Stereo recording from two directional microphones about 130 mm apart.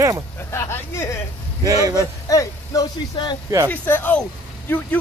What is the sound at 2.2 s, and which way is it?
Speech, 25° left (ahead or behind).